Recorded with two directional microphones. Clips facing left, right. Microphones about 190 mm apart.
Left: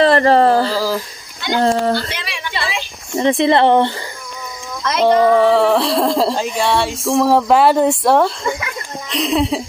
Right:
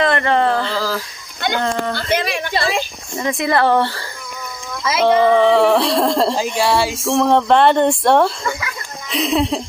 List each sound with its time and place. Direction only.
0.0 s speech: 35° left (ahead or behind)
0.7 s a sound: 15° left (ahead or behind)
1.5 s speech: 35° left (ahead or behind)
2.0 s a woman's voice: 45° right (ahead or behind)
3.2 s speech: 30° left (ahead or behind)
5.1 s speech: 5° left (ahead or behind)